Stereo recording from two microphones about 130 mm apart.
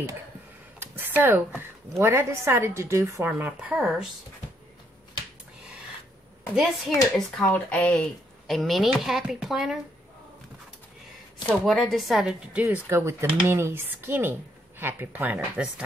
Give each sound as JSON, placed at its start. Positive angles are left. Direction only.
{"t": 0.7, "sound": "a woman's voice", "side_deg": -15}
{"t": 6.5, "sound": "speech", "side_deg": 0}
{"t": 11.4, "sound": "speech", "side_deg": 5}
{"t": 12.6, "sound": "a woman's voice", "side_deg": -20}